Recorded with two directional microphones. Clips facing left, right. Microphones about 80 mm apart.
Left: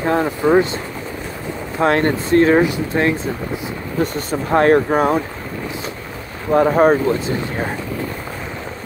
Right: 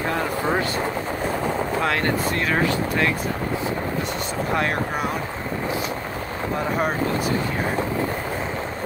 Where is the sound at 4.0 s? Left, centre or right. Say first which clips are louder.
Left 5 dB; left.